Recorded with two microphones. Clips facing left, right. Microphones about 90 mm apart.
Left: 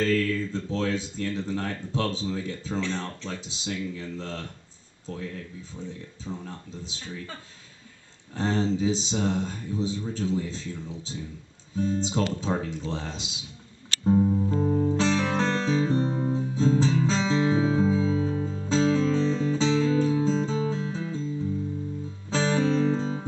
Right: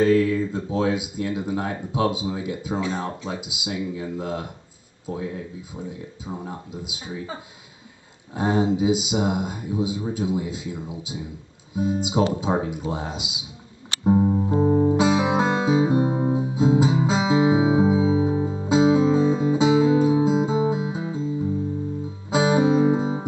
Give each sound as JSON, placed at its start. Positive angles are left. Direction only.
{"t": 0.0, "sound": "speech", "side_deg": -15}
{"t": 8.4, "sound": "speech", "side_deg": -10}
{"t": 14.0, "sound": "music", "side_deg": -30}
{"t": 15.0, "sound": "music", "side_deg": -10}